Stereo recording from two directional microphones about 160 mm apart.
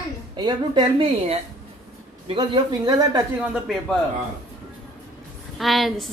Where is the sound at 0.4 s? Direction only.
30° right (ahead or behind).